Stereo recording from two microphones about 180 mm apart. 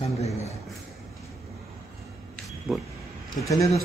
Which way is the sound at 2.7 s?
Centre (ahead or behind).